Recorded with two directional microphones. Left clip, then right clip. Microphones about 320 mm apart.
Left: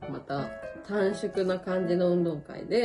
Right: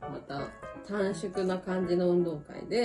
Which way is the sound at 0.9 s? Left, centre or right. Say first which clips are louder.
Left 4 dB; left.